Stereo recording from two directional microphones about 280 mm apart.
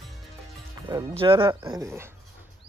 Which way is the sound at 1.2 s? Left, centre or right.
Centre.